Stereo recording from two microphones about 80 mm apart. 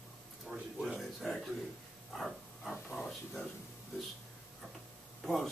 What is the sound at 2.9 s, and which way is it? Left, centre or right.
Speech, centre.